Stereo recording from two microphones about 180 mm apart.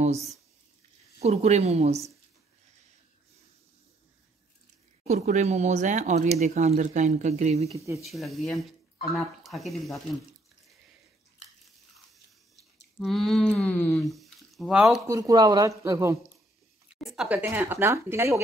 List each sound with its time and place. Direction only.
1.2 s speech: 35° right (ahead or behind)
5.0 s speech: 40° right (ahead or behind)
7.7 s speech: 15° right (ahead or behind)
8.0 s speech: centre (ahead or behind)
13.0 s speech: centre (ahead or behind)
15.0 s speech: 20° right (ahead or behind)
17.0 s speech: centre (ahead or behind)